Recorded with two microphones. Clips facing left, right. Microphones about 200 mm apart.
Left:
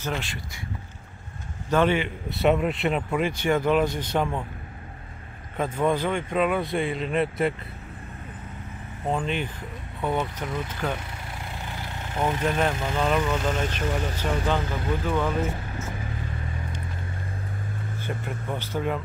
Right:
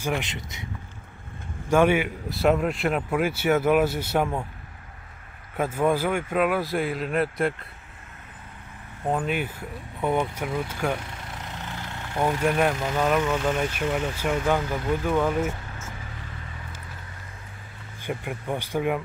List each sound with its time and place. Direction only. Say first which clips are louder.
0.2 s speech: right 1 dB; 20° right (ahead or behind)
1.7 s a man's voice: right 2 dB; 10° right (ahead or behind)
5.6 s speech: right 1 dB; 10° right (ahead or behind)
9.0 s a man's voice: right 1 dB; 5° right (ahead or behind)
12.4 s a man's voice: right 2 dB; 10° right (ahead or behind)
17.9 s a man's voice: right 3 dB; 15° right (ahead or behind)